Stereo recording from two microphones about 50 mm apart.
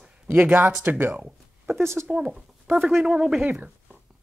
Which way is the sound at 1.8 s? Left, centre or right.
Right.